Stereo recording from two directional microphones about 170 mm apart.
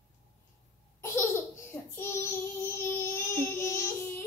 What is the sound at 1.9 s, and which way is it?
Child singing, 15° left (ahead or behind).